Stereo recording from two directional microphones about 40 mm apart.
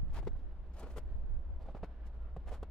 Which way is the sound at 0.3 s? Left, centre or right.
Centre.